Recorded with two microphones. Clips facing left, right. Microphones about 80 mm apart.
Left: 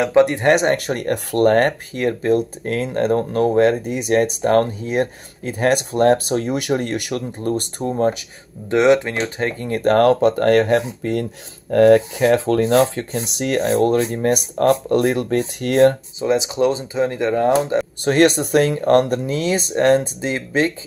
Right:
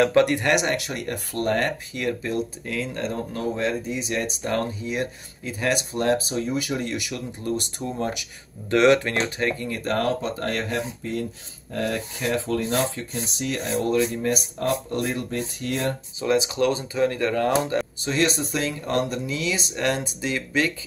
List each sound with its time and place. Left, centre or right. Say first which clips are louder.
0.0 s speech: left 4 dB; left
3.2 s speech: left 12 dB; left
7.9 s speech: left 9 dB; left
8.6 s speech: left 3 dB; left
9.5 s speech: left 3 dB; left
9.8 s speech: left 13 dB; left
10.0 s speech: left 11 dB; left
13.3 s speech: left 9 dB; left
16.2 s speech: left 1 dB; left
18.0 s speech: left 11 dB; left